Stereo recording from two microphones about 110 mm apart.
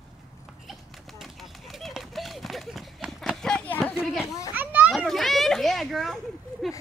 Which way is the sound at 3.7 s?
20° left (ahead or behind).